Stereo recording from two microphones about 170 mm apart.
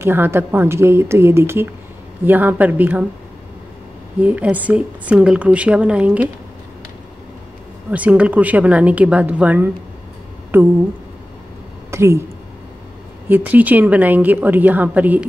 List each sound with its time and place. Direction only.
0.0 s speech: 15° right (ahead or behind)
4.2 s speech: 10° right (ahead or behind)
7.9 s speech: 10° right (ahead or behind)
11.9 s speech: 15° right (ahead or behind)
13.3 s speech: 10° right (ahead or behind)